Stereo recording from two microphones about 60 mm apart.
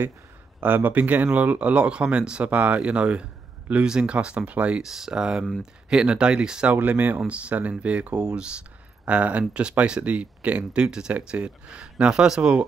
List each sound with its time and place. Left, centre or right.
0.6 s speech: right
4.8 s speech: centre
6.7 s speech: right
7.2 s speech: right